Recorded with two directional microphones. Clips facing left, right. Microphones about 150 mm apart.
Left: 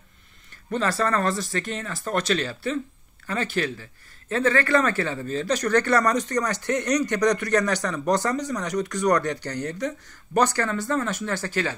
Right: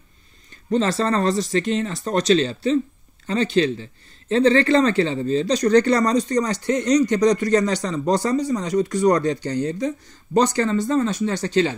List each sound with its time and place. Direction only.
0.7 s speech: 20° right (ahead or behind)
6.7 s speech: 60° left (ahead or behind)
7.0 s speech: 10° right (ahead or behind)
7.3 s speech: 65° left (ahead or behind)
7.6 s speech: 20° right (ahead or behind)
8.5 s speech: 65° left (ahead or behind)
10.4 s speech: 15° right (ahead or behind)